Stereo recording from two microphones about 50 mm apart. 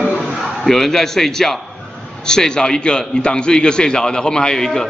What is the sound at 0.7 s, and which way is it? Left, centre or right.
A man's voice, centre.